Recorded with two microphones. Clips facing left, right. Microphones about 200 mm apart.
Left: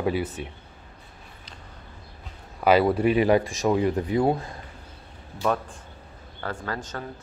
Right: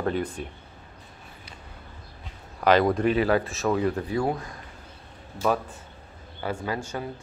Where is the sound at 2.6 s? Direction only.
5° left (ahead or behind); by 4.6 s 25° left (ahead or behind).